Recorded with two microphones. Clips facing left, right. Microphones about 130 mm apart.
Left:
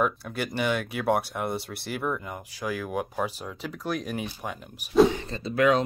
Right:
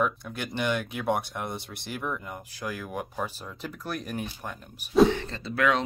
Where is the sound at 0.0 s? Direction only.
5° left (ahead or behind).